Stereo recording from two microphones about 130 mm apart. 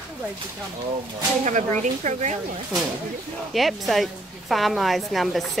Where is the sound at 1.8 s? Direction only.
65° right (ahead or behind).